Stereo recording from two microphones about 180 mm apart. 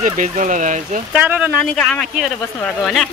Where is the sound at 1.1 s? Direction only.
5° right (ahead or behind).